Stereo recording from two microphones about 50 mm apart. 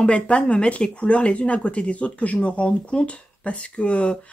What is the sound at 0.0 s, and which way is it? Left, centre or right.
Speech, left.